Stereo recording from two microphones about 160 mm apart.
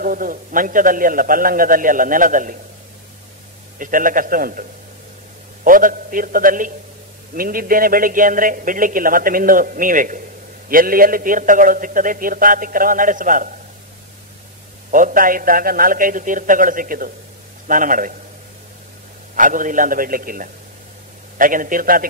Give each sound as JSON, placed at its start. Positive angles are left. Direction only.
{"t": 0.0, "sound": "a man's voice", "side_deg": -60}
{"t": 3.7, "sound": "a man's voice", "side_deg": -60}
{"t": 14.9, "sound": "a man's voice", "side_deg": -55}
{"t": 19.3, "sound": "a man's voice", "side_deg": -55}